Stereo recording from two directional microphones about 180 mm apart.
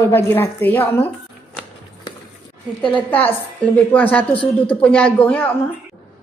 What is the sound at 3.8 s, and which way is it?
Speech, 10° left (ahead or behind).